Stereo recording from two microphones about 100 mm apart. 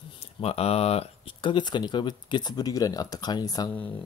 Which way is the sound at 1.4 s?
50° left (ahead or behind).